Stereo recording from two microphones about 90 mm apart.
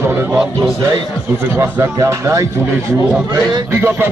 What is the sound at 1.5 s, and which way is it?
Speech, 30° right (ahead or behind).